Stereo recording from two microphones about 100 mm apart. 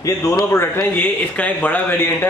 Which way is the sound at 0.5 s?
20° left (ahead or behind).